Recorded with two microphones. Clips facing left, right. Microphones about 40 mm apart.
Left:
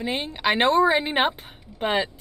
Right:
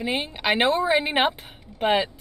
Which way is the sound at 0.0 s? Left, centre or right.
Centre.